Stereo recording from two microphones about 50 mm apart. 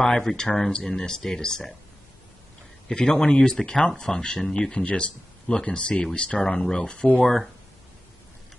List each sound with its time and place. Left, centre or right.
0.0 s speech: centre
2.9 s speech: centre